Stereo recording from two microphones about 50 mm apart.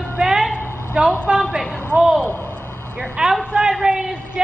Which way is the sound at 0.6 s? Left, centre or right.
Left.